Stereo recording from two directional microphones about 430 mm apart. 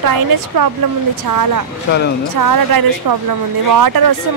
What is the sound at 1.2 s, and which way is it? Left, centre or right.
Speech, right.